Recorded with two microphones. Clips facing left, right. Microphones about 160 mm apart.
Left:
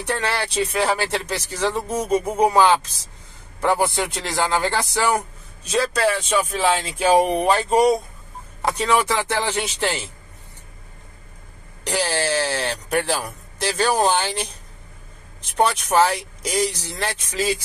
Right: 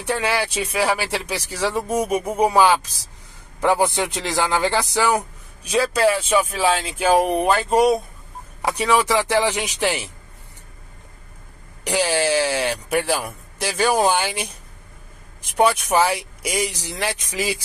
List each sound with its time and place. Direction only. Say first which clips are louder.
0.0 s speech: right 2 dB; 10° right (ahead or behind)
8.6 s speech: right 1 dB; 15° right (ahead or behind)
11.8 s speech: right 3 dB; 10° right (ahead or behind)
15.5 s speech: right 1 dB; 10° right (ahead or behind)